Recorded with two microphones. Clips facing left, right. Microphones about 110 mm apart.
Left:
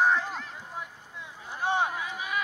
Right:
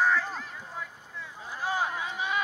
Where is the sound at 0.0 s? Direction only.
20° left (ahead or behind).